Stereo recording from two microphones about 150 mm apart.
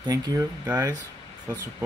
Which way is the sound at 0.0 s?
25° right (ahead or behind).